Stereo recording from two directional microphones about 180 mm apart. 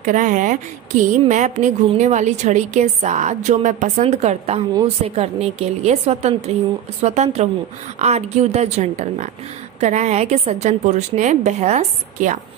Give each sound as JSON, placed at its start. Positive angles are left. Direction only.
{"t": 0.0, "sound": "a woman's voice", "side_deg": -45}